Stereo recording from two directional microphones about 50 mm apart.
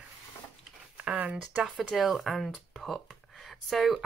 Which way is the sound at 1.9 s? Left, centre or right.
Centre.